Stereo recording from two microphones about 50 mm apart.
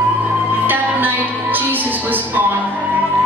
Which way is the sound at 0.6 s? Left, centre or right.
Right.